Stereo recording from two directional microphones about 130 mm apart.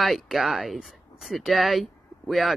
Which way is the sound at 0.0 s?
Centre (ahead or behind).